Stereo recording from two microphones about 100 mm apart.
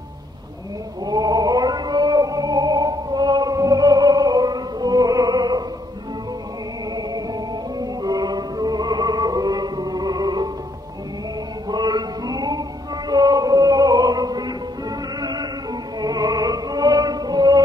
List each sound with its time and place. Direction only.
1.0 s a sound: 40° right (ahead or behind)
7.0 s music: 40° right (ahead or behind)
11.7 s music: 45° right (ahead or behind)